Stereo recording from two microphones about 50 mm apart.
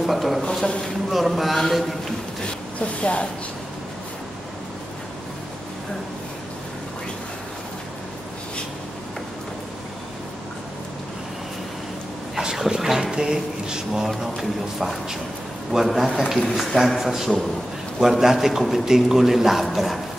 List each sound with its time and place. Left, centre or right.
0.0 s a sound: centre
1.1 s a man's voice: centre
2.4 s speech: left
12.4 s a man's voice: centre